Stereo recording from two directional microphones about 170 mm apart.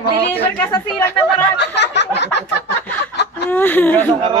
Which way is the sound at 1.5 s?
90° left.